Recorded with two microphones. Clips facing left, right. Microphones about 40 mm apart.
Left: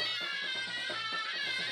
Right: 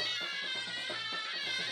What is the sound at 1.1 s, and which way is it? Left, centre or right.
Music, centre.